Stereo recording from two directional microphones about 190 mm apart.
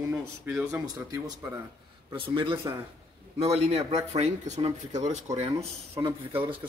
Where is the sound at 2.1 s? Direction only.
25° right (ahead or behind).